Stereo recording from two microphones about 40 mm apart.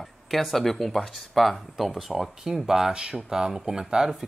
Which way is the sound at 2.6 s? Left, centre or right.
Centre.